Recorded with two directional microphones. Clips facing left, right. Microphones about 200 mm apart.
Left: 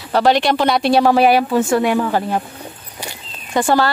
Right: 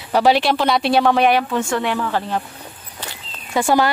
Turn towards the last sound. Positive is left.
turn(degrees=-10)  # may be behind; listen again after turning